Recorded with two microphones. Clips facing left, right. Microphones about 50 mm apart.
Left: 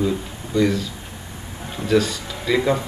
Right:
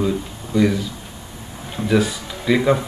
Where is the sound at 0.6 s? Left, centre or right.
Centre.